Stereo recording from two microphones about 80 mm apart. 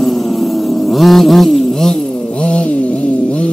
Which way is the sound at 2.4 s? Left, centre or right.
Centre.